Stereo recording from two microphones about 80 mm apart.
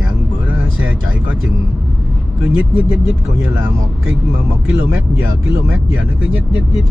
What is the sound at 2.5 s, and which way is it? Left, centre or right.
Speech, centre.